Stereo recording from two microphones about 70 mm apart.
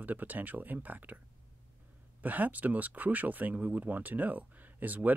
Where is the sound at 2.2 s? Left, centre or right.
Right.